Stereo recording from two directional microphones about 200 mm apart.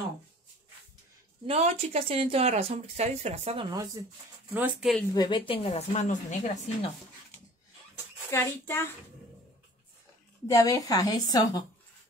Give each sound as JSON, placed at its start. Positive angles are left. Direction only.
{"t": 1.5, "sound": "speech", "side_deg": -30}
{"t": 3.7, "sound": "speech", "side_deg": -15}
{"t": 4.6, "sound": "speech", "side_deg": -5}
{"t": 5.1, "sound": "a woman's voice", "side_deg": 20}
{"t": 8.3, "sound": "a woman's voice", "side_deg": 15}
{"t": 10.5, "sound": "a woman's voice", "side_deg": 15}